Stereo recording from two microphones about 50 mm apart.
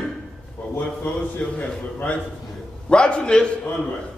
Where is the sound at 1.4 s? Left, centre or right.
Left.